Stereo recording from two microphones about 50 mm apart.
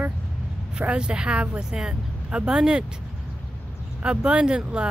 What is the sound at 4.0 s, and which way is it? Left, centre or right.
Speech, centre.